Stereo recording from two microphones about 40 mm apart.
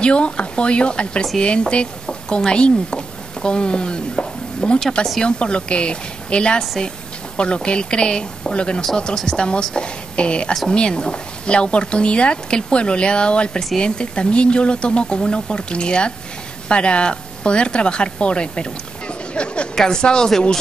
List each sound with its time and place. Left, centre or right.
0.0 s speech: left
19.7 s a woman's voice: centre